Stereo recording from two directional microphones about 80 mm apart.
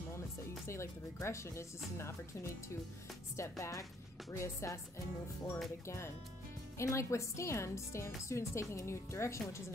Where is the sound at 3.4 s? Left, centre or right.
Left.